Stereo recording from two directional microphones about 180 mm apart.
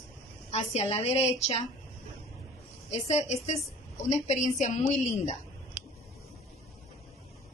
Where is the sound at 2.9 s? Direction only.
35° left (ahead or behind).